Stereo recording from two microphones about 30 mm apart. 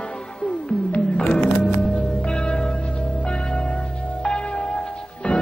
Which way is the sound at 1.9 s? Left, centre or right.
Left.